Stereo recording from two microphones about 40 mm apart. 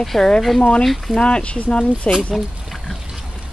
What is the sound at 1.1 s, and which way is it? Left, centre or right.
Speech, left.